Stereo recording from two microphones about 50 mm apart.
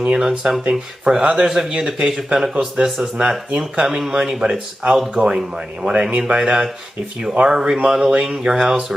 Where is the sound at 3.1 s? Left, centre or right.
Right.